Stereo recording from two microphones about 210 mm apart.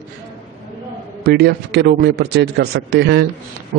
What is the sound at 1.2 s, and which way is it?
Speech, 50° right (ahead or behind).